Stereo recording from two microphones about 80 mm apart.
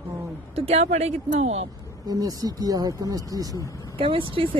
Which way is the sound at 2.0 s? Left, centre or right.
Right.